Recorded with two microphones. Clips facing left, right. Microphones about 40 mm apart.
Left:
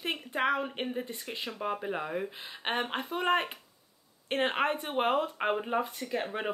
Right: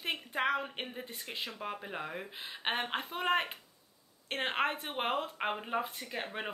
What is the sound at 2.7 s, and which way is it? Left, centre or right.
Speech, centre.